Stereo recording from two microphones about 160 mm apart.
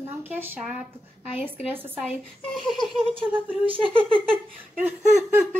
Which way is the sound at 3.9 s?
35° right (ahead or behind).